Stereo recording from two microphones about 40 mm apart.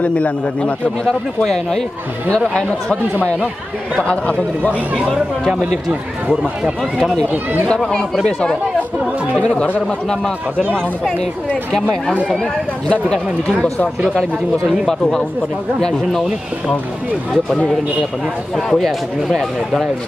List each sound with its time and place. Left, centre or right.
0.0 s a man's voice: left
1.0 s speech: centre
4.0 s a man's voice: left
7.6 s speech: left
9.8 s speech: centre
15.8 s speech: centre
18.7 s a man's voice: centre